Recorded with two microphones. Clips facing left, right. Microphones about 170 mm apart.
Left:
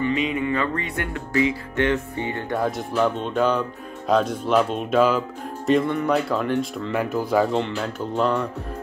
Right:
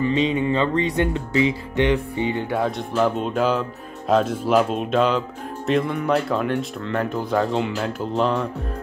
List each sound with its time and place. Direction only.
0.0 s music: 25° right (ahead or behind)
2.5 s speech: centre (ahead or behind)